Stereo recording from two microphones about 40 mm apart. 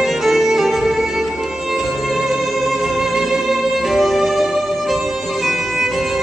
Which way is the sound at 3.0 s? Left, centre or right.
Centre.